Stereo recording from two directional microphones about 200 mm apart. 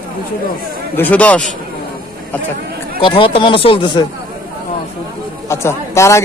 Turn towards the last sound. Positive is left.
turn(degrees=15)  # may be behind; listen again after turning